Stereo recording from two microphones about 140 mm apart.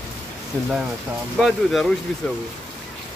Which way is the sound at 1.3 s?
Centre (ahead or behind).